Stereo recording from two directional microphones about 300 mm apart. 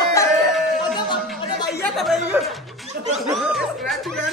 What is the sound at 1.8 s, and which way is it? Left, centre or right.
Chatter, centre.